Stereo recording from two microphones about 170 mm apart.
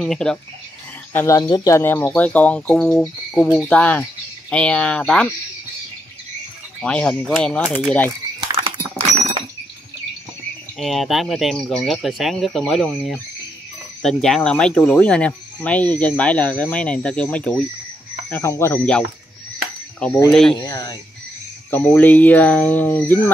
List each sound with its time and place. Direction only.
0.0 s speech: 5° left (ahead or behind)
1.1 s speech: 20° left (ahead or behind)
6.8 s speech: 5° left (ahead or behind)
8.5 s rodents: 30° right (ahead or behind)
10.8 s speech: centre (ahead or behind)
20.2 s speech: 5° left (ahead or behind)
20.6 s speech: 20° left (ahead or behind)
21.6 s speech: 10° left (ahead or behind)